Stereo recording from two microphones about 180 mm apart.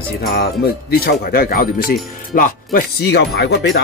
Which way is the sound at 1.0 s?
55° left (ahead or behind).